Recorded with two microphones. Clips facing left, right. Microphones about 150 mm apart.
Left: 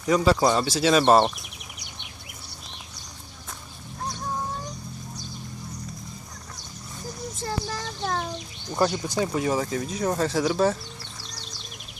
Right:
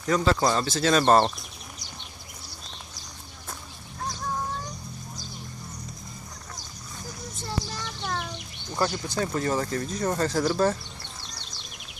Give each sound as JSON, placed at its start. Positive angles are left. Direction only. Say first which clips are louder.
{"t": 0.0, "sound": "speech", "louder": "left 3 dB", "side_deg": 10}
{"t": 8.0, "sound": "a sound", "louder": "left 4 dB", "side_deg": 50}
{"t": 8.7, "sound": "speech", "louder": "left 3 dB", "side_deg": 15}